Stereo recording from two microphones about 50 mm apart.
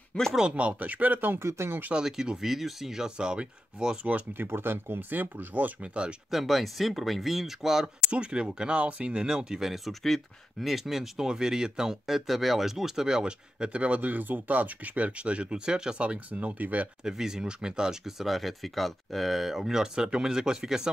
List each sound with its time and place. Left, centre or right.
0.3 s speech: centre
0.6 s speech: right
1.4 s speech: right
1.9 s speech: centre
4.3 s speech: right
6.3 s speech: centre
8.1 s speech: centre
17.0 s speech: centre
19.8 s speech: centre